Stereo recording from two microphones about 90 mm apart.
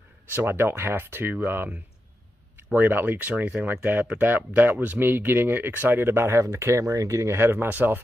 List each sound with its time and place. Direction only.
0.3 s speech: 25° right (ahead or behind)